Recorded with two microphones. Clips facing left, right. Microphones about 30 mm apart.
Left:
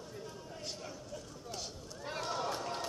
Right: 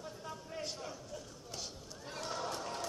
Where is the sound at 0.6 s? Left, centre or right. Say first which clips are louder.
Even; centre.